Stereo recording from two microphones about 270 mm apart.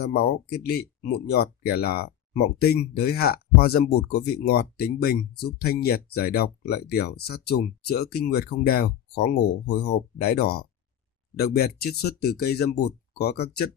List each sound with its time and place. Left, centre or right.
0.0 s speech: left